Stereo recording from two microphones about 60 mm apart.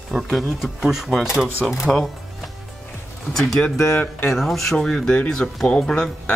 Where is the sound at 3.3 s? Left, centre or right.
Centre.